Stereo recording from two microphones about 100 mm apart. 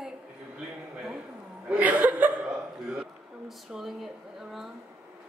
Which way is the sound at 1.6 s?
15° right (ahead or behind).